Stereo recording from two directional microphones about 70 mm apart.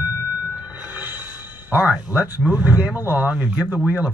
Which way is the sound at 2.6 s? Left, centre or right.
Right.